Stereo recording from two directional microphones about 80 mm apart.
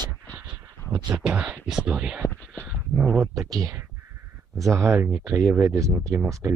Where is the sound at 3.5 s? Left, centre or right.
Right.